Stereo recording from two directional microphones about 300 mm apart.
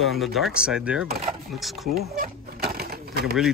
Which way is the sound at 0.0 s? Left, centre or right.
Centre.